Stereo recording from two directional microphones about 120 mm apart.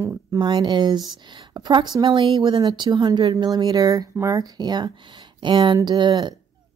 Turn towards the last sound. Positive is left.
turn(degrees=-40)  # may be behind; listen again after turning